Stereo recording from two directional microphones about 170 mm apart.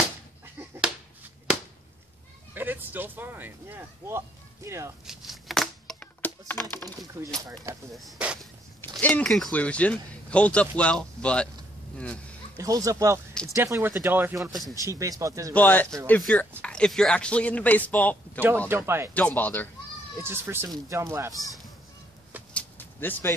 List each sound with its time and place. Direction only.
2.5 s speech: 10° right (ahead or behind)
5.0 s a sound: centre (ahead or behind)
7.4 s speech: 20° right (ahead or behind)
7.9 s a man's voice: 5° right (ahead or behind)
12.5 s speech: 20° right (ahead or behind)
15.5 s a man's voice: 10° left (ahead or behind)
18.7 s speech: 15° right (ahead or behind)
19.1 s a man's voice: 10° left (ahead or behind)
20.2 s speech: 15° right (ahead or behind)
22.5 s a sound: 10° left (ahead or behind)